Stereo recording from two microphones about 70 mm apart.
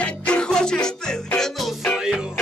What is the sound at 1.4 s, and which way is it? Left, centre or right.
Music, centre.